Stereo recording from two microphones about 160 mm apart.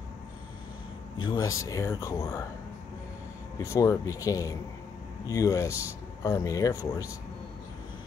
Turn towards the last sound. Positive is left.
turn(degrees=20)  # may be behind; listen again after turning